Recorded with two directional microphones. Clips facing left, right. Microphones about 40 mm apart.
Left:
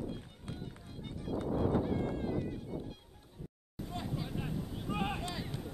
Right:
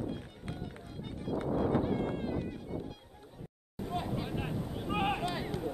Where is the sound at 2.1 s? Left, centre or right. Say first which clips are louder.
Right 1 dB; right.